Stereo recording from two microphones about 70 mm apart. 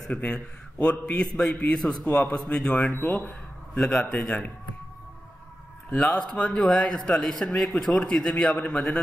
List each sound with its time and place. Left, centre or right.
0.1 s a man's voice: centre
3.0 s a man's voice: left
6.1 s a man's voice: centre